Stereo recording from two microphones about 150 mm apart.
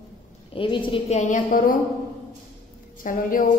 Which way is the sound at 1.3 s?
65° left (ahead or behind).